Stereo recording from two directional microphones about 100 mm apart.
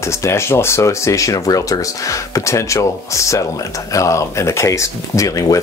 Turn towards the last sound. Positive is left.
turn(degrees=35)  # may be behind; listen again after turning